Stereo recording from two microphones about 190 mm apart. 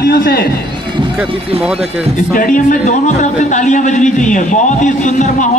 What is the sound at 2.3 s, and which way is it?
A man's voice, 45° left (ahead or behind).